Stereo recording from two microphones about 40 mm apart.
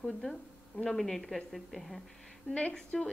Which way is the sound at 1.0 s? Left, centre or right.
Centre.